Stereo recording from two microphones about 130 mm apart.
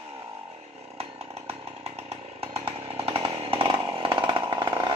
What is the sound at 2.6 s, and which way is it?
Chainsaw, 45° right (ahead or behind).